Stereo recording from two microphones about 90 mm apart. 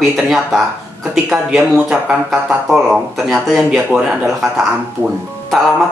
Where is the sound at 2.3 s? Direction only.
Centre (ahead or behind).